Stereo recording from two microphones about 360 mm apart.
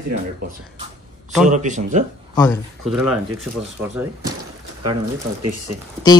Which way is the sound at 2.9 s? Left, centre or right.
Centre.